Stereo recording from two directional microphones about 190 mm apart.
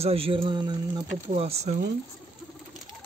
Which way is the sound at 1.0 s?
35° right (ahead or behind).